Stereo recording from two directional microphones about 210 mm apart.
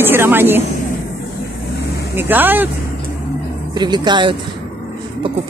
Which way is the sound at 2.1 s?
10° right (ahead or behind).